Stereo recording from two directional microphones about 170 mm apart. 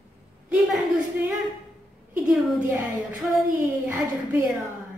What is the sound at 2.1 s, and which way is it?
Speech, 10° right (ahead or behind).